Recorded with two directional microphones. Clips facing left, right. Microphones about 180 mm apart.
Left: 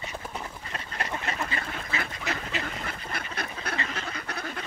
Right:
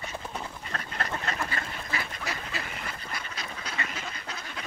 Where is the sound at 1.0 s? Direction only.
20° left (ahead or behind).